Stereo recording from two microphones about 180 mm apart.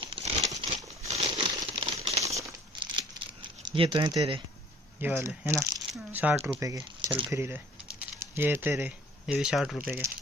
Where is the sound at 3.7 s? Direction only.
30° right (ahead or behind).